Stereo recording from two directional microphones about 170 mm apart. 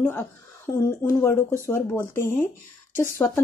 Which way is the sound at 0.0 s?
15° left (ahead or behind).